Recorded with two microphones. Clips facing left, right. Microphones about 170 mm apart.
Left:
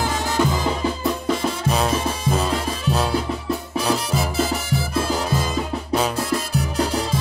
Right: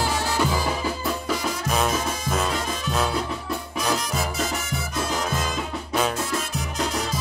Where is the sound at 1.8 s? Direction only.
30° left (ahead or behind).